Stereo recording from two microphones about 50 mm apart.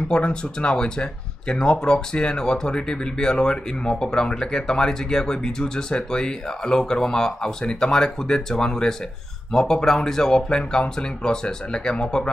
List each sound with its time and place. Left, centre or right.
0.1 s speech: centre